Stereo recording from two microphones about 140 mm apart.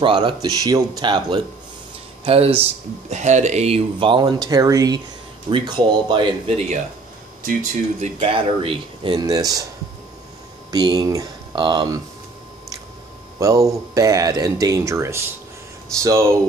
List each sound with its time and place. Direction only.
0.0 s speech: 35° right (ahead or behind)
2.2 s speech: 45° right (ahead or behind)
8.0 s speech: 45° right (ahead or behind)
9.2 s speech: 25° right (ahead or behind)
10.7 s speech: 30° right (ahead or behind)
13.4 s speech: 20° right (ahead or behind)